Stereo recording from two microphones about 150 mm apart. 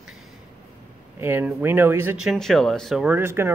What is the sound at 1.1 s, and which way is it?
Speech, 15° right (ahead or behind).